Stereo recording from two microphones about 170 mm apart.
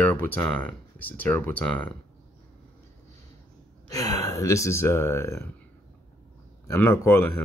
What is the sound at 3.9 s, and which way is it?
Speech, 20° left (ahead or behind).